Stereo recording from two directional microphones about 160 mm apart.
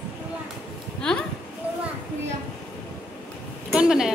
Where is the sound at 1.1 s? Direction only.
5° left (ahead or behind).